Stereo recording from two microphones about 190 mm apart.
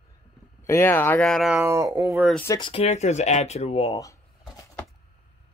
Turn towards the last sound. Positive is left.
turn(degrees=15)  # may be behind; listen again after turning